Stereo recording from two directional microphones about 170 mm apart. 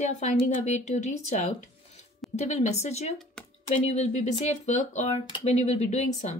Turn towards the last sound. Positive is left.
turn(degrees=45)  # may be behind; listen again after turning